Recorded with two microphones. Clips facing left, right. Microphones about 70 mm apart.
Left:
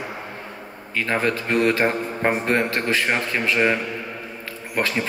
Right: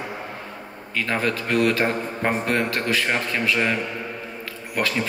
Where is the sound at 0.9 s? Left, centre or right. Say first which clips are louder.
Left 2 dB; left.